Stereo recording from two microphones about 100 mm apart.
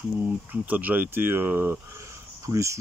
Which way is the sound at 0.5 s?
15° right (ahead or behind).